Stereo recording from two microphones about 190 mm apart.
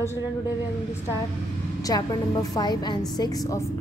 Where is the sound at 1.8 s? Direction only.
20° left (ahead or behind).